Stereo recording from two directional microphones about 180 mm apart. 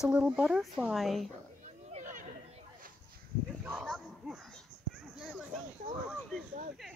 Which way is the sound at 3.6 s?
5° right (ahead or behind).